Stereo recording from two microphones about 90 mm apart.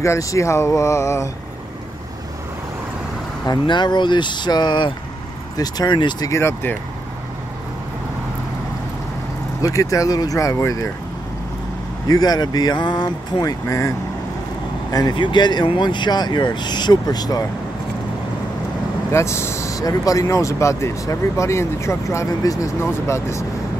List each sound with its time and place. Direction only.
0.0 s speech: 35° left (ahead or behind)
3.4 s speech: 55° left (ahead or behind)
5.6 s speech: 45° left (ahead or behind)
5.9 s speech: 60° left (ahead or behind)
6.2 s speech: 30° left (ahead or behind)
9.6 s speech: 40° left (ahead or behind)
12.1 s speech: 45° left (ahead or behind)
15.1 s speech: 55° left (ahead or behind)
19.1 s speech: 30° left (ahead or behind)